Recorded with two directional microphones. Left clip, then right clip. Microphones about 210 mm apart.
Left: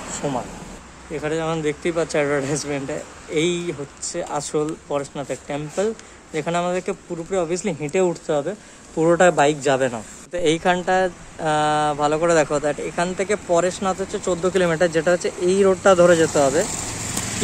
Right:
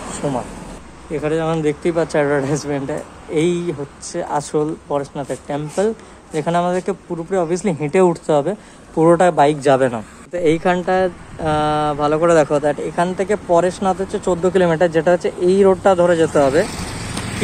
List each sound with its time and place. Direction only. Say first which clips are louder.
1.1 s a man's voice: right 5 dB; centre (ahead or behind)
8.9 s a man's voice: right 3 dB; centre (ahead or behind)
16.6 s vehicle: right 2 dB; 60° left (ahead or behind)